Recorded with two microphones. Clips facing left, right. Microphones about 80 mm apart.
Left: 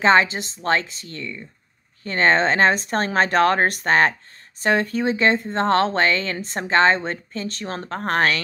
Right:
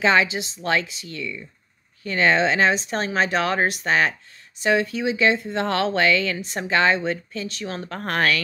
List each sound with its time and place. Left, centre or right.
0.0 s speech: left